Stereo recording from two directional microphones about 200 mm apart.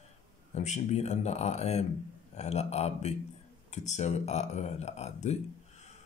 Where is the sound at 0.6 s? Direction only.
35° left (ahead or behind).